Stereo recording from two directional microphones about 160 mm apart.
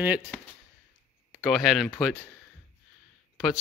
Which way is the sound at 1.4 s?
Centre (ahead or behind).